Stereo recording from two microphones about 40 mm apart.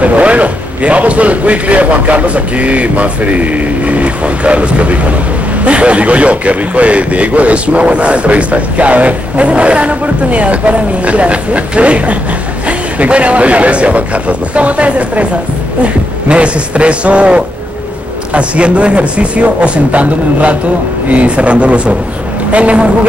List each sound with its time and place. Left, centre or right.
0.0 s a man's voice: right